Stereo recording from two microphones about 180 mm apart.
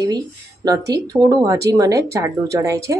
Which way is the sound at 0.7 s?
20° right (ahead or behind).